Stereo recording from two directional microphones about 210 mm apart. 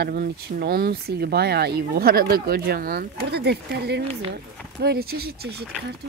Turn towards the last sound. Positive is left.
turn(degrees=-45)  # may be behind; listen again after turning